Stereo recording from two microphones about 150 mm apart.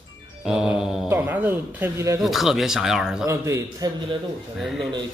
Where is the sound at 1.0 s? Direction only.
15° right (ahead or behind).